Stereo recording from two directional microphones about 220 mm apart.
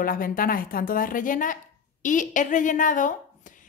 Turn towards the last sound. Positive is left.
turn(degrees=35)  # may be behind; listen again after turning